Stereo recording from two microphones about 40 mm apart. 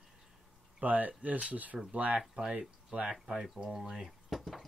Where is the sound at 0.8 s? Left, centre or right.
Right.